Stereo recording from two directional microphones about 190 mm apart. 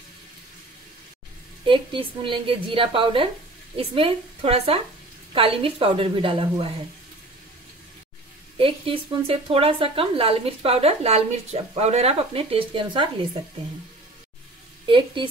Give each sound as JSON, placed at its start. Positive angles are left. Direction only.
{"t": 1.6, "sound": "a woman's voice", "side_deg": -25}
{"t": 8.5, "sound": "speech", "side_deg": -30}
{"t": 14.9, "sound": "a woman's voice", "side_deg": -25}